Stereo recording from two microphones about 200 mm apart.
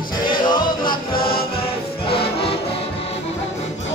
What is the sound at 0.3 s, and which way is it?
Music, 25° left (ahead or behind).